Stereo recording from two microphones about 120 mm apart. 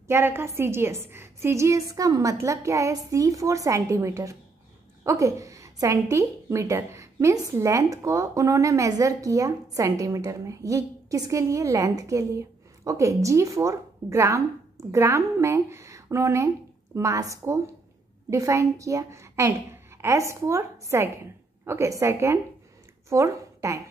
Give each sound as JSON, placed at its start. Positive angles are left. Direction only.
{"t": 0.1, "sound": "a woman's voice", "side_deg": -20}